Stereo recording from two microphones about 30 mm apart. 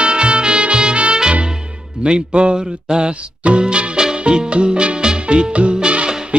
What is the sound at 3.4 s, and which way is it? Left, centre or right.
Music, right.